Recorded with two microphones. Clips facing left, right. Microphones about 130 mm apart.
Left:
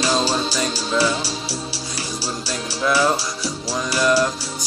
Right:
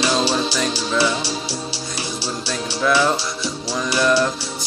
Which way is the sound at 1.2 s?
30° left (ahead or behind).